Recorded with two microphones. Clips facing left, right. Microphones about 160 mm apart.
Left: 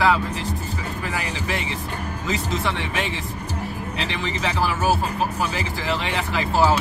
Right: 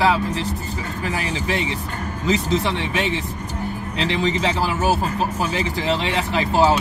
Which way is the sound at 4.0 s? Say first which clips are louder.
Right 7 dB; 30° right (ahead or behind).